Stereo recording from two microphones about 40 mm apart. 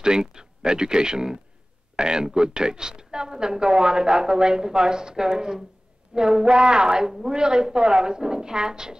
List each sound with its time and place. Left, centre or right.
0.0 s a woman's voice: centre